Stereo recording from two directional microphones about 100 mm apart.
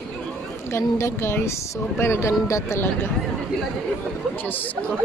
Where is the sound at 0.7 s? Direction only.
25° left (ahead or behind).